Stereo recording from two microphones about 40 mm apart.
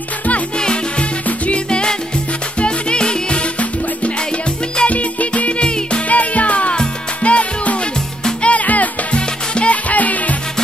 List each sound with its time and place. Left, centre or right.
1.5 s music: left
4.8 s music: left